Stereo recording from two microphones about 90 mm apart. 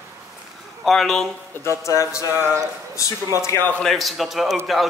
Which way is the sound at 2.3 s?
25° right (ahead or behind).